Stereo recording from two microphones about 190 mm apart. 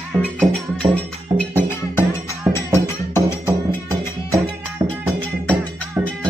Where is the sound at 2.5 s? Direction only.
15° left (ahead or behind).